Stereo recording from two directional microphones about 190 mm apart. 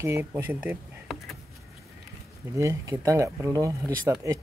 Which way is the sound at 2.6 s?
15° right (ahead or behind).